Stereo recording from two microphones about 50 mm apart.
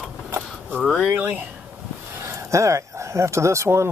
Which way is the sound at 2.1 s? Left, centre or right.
Right.